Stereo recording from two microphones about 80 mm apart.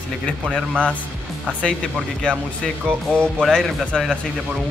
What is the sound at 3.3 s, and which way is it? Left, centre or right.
Chink, centre.